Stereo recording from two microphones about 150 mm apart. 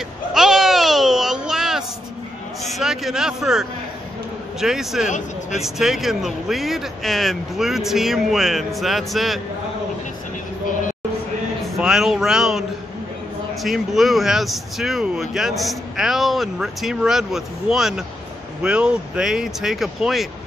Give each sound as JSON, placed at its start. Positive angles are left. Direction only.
{"t": 0.3, "sound": "a sound", "side_deg": -5}
{"t": 2.7, "sound": "speech", "side_deg": 0}
{"t": 11.8, "sound": "speech", "side_deg": -5}